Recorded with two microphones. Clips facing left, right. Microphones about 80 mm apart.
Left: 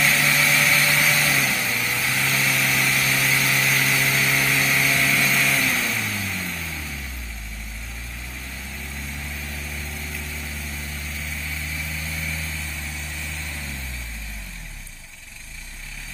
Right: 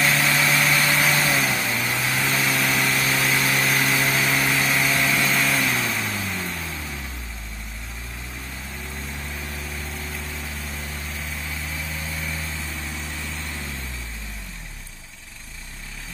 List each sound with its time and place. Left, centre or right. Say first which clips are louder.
0.0 s vehicle: even; right